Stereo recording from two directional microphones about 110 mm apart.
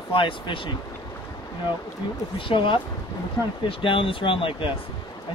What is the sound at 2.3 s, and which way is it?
Speech, 50° left (ahead or behind).